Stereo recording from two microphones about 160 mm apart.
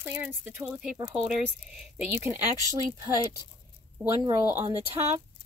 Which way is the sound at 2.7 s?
20° right (ahead or behind).